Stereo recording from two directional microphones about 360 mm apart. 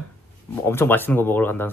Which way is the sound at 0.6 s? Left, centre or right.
Centre.